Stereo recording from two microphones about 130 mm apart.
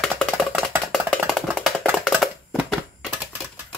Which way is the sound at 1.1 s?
5° left (ahead or behind).